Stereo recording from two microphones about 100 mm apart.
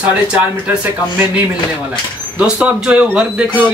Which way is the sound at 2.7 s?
10° right (ahead or behind).